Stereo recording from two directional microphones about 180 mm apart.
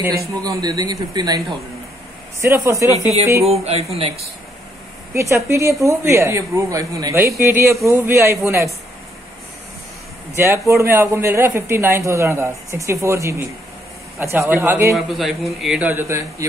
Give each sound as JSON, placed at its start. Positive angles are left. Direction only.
{"t": 0.3, "sound": "a man's voice", "side_deg": -20}
{"t": 2.4, "sound": "a woman's voice", "side_deg": -15}
{"t": 3.4, "sound": "speech", "side_deg": -35}
{"t": 5.1, "sound": "a woman's voice", "side_deg": -15}
{"t": 10.3, "sound": "a woman's voice", "side_deg": -15}
{"t": 15.0, "sound": "a man's voice", "side_deg": 0}